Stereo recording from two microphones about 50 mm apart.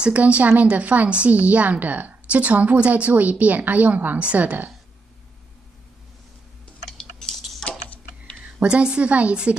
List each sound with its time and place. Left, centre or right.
0.0 s a woman's voice: right
6.9 s typing: centre
7.6 s a sound: centre
8.5 s a woman's voice: right